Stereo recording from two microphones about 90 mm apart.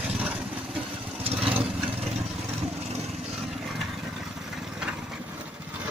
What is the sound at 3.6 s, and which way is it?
Vehicle, centre (ahead or behind).